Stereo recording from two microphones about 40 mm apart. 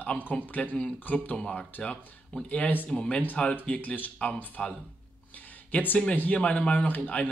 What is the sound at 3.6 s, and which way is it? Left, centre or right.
Speech, left.